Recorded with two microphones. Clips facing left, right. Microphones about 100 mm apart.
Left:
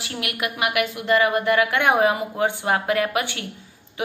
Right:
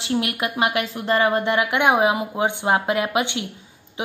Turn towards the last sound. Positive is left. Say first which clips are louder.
# left 1 dB
turn(degrees=-20)  # may be behind; listen again after turning